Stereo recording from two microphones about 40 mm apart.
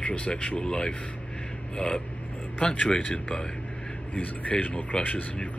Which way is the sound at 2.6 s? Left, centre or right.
Left.